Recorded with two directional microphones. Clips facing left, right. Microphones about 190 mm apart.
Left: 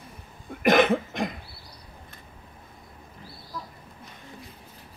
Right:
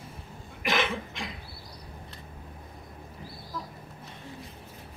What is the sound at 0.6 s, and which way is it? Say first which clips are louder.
Cough: left 10 dB; 50° left (ahead or behind).